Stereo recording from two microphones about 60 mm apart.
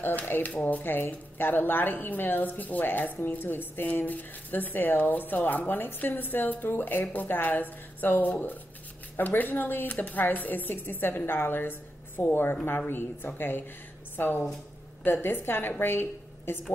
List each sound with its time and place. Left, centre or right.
0.0 s a woman's voice: left